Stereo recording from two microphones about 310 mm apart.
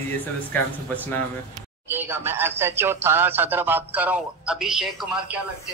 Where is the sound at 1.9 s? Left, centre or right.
Centre.